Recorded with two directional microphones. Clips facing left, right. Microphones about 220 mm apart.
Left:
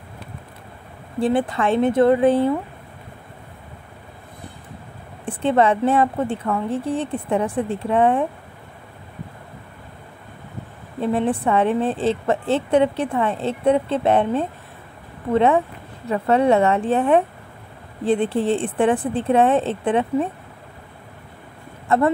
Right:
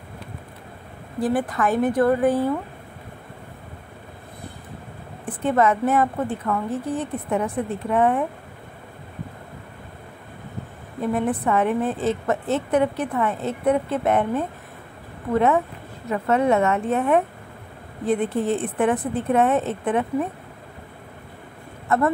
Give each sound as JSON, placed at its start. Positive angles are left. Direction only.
{"t": 1.2, "sound": "a woman's voice", "side_deg": 25}
{"t": 5.2, "sound": "a woman's voice", "side_deg": 25}
{"t": 11.0, "sound": "a woman's voice", "side_deg": 30}
{"t": 21.8, "sound": "speech", "side_deg": 25}